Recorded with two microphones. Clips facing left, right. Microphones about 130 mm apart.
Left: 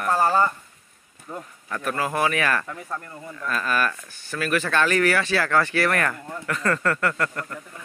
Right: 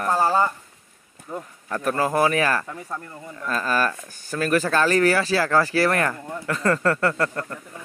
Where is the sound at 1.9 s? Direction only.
35° right (ahead or behind).